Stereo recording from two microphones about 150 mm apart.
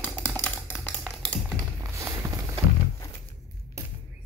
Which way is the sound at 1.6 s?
20° right (ahead or behind).